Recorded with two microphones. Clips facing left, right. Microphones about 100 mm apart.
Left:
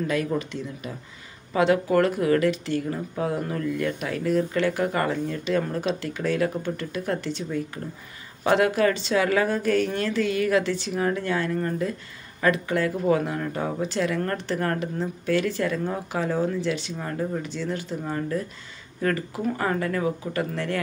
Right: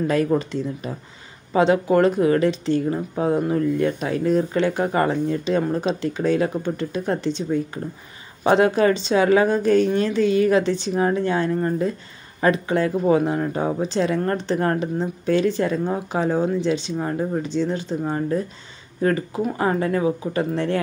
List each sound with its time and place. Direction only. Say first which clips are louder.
0.0 s speech: right 6 dB; 35° right (ahead or behind)
1.5 s speech: right 3 dB; 25° right (ahead or behind)
8.5 s speech: right 4 dB; 25° right (ahead or behind)